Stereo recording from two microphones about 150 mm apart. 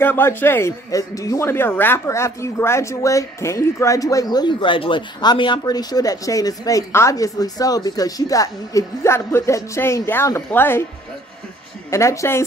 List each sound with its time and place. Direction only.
0.0 s speech: 15° left (ahead or behind)
11.9 s speech: 20° left (ahead or behind)